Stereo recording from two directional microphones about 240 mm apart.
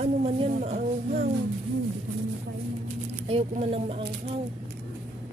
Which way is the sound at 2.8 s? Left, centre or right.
Right.